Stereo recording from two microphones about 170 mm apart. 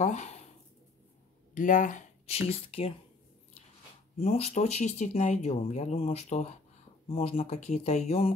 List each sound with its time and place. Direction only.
0.0 s speech: 45° left (ahead or behind)
1.5 s speech: 50° left (ahead or behind); by 2.9 s 35° left (ahead or behind)
4.2 s speech: 40° left (ahead or behind)